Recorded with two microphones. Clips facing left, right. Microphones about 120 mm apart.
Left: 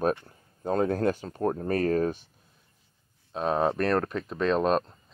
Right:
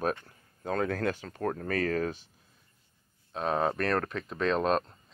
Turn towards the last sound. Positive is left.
turn(degrees=10)  # may be behind; listen again after turning